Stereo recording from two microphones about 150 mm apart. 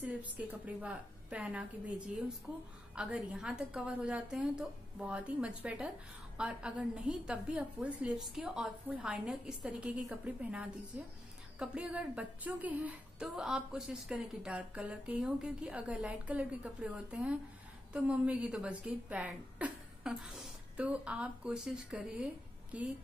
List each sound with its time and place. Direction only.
0.0 s a woman's voice: 10° right (ahead or behind)